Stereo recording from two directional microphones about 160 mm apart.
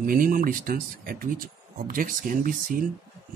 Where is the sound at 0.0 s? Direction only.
60° right (ahead or behind).